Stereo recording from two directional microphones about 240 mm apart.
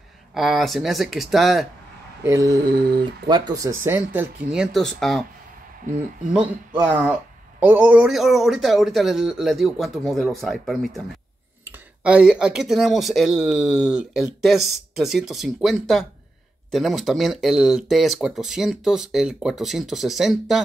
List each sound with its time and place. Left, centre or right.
0.3 s speech: centre
2.2 s speech: centre
5.9 s speech: right
6.3 s speech: centre